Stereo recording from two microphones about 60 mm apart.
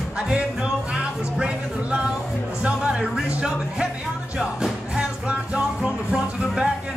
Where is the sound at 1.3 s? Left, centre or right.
Centre.